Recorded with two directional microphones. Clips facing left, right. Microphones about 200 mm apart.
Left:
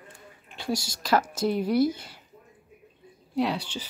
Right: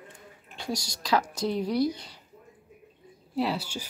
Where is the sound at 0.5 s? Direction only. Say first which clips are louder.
Left 3 dB; 25° left (ahead or behind).